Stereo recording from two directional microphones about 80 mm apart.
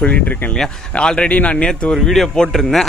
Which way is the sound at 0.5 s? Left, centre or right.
Centre.